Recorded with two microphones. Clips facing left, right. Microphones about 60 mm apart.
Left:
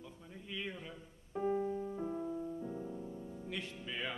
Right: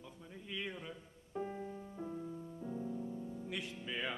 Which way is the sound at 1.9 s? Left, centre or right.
Centre.